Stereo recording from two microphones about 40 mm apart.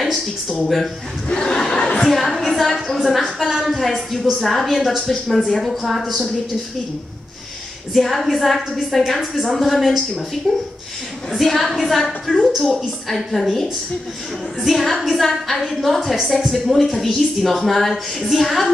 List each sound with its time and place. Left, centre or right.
0.0 s a woman's voice: centre
1.3 s crowd: centre
2.0 s a woman's voice: centre
7.9 s a woman's voice: centre
10.4 s speech: centre
11.3 s a woman's voice: centre